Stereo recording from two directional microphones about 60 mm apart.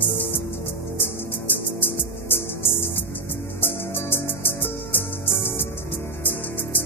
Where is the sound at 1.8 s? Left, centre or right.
Left.